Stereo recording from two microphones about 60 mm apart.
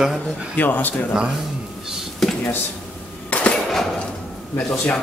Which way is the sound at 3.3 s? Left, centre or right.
Left.